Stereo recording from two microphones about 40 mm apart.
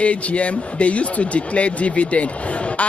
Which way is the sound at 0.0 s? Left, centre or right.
Left.